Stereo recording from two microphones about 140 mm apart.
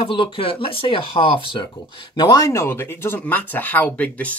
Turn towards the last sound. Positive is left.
turn(degrees=10)  # may be behind; listen again after turning